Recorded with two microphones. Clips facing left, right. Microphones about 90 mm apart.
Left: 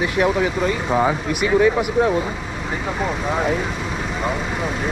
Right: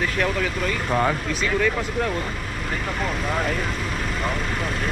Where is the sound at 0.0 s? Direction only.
15° left (ahead or behind).